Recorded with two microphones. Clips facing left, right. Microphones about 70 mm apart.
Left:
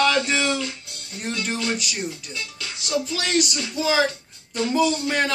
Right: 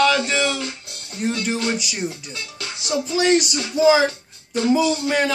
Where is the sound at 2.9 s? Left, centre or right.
Right.